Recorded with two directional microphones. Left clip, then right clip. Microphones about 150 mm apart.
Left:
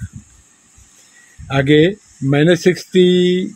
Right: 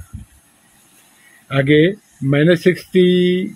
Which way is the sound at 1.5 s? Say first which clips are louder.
Left 1 dB; 40° left (ahead or behind).